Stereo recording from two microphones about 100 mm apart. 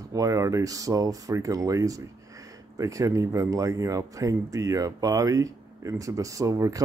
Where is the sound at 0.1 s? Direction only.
35° right (ahead or behind).